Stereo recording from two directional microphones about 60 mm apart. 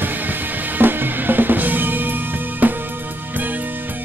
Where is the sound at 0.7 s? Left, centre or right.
Right.